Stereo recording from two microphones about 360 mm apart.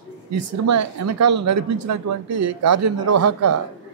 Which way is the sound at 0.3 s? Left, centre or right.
Right.